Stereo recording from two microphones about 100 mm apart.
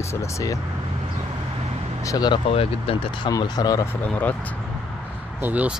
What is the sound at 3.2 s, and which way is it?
Speech, 45° left (ahead or behind).